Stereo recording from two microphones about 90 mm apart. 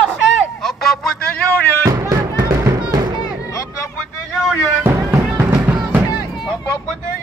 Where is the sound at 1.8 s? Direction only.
40° right (ahead or behind).